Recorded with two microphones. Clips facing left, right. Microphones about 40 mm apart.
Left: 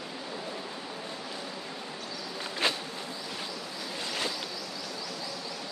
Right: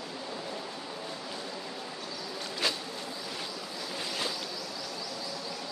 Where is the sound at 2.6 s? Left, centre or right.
Left.